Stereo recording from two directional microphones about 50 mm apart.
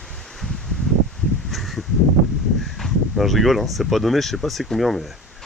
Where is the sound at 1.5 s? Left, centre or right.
Centre.